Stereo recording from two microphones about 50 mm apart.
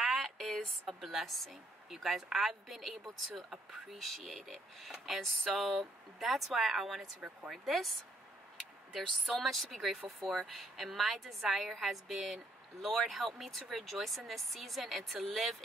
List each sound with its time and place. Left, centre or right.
0.0 s a woman's voice: centre
9.4 s a woman's voice: centre